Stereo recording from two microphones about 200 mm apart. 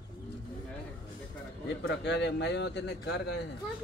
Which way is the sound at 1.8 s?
60° left (ahead or behind).